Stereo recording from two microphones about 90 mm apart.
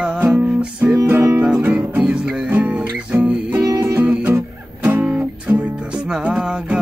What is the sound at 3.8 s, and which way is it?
Music, 25° right (ahead or behind).